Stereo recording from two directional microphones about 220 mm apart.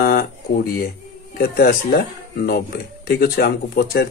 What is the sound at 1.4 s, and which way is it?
Speech, 45° left (ahead or behind).